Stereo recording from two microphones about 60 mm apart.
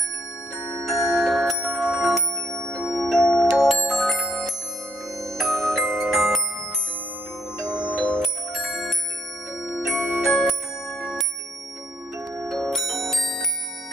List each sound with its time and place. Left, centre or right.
0.8 s glockenspiel: centre
2.0 s music: centre
7.7 s music: right
8.2 s music: centre
12.4 s music: centre